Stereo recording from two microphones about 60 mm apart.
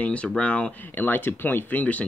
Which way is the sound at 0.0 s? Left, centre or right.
Centre.